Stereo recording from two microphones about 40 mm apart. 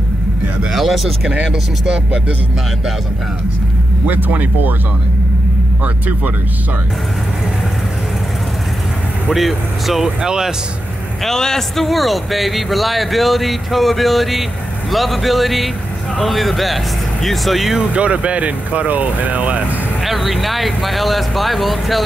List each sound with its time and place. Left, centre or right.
0.7 s a man's voice: centre
1.3 s speech: right
4.1 s speech: right
9.3 s a man's voice: centre
10.2 s speech: centre
11.2 s a man's voice: centre
17.7 s speech: right
20.1 s a man's voice: centre